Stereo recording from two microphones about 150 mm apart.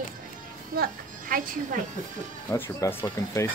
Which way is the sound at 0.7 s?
70° right (ahead or behind).